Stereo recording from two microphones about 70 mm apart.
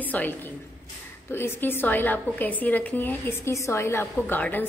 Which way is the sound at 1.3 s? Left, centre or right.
Left.